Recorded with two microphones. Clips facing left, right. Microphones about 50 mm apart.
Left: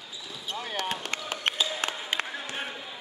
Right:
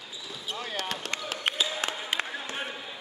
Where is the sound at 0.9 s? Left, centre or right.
Left.